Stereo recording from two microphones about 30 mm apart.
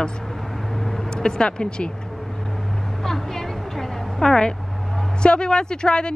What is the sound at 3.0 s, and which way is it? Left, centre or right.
A woman's voice, centre.